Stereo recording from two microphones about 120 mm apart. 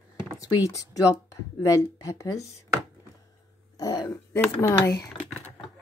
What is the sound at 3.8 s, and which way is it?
Speech, 30° left (ahead or behind).